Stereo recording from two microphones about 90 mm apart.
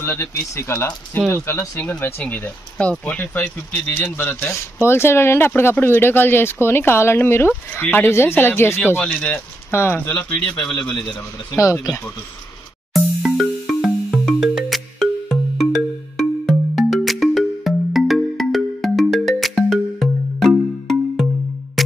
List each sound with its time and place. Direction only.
0.0 s speech: 30° left (ahead or behind)
9.0 s speech: 15° left (ahead or behind)
9.7 s speech: 25° left (ahead or behind)
11.1 s speech: 35° left (ahead or behind)
12.9 s music: centre (ahead or behind)